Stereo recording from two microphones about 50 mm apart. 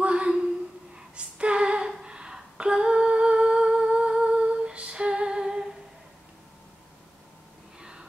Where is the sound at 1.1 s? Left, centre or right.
Right.